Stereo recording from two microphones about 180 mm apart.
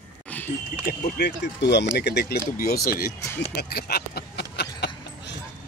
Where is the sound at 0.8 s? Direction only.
60° left (ahead or behind).